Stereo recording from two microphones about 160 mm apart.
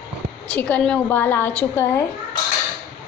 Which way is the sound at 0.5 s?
10° left (ahead or behind).